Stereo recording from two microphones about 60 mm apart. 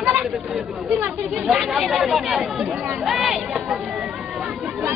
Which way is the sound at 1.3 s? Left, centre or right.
Centre.